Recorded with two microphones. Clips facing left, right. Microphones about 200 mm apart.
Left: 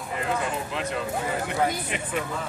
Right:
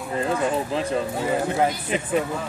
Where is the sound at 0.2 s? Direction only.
35° right (ahead or behind).